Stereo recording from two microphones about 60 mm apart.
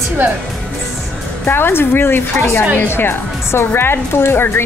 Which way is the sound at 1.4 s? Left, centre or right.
Left.